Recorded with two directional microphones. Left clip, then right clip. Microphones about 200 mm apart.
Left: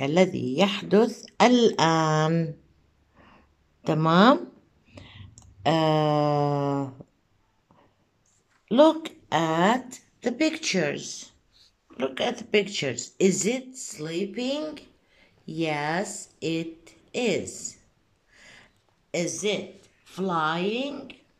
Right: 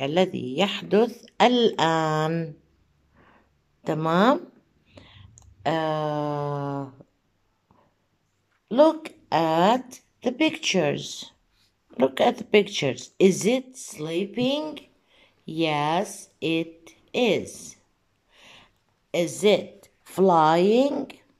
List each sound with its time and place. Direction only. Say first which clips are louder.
0.0 s speech: left 1 dB; centre (ahead or behind)
3.2 s sniff: left 2 dB; centre (ahead or behind)
3.8 s speech: left 2 dB; 5° right (ahead or behind)
4.9 s clicking: left 2 dB; centre (ahead or behind)
8.6 s speech: even; centre (ahead or behind)
18.3 s a sound: right 1 dB; 10° right (ahead or behind)
19.4 s speech: right 8 dB; 30° right (ahead or behind)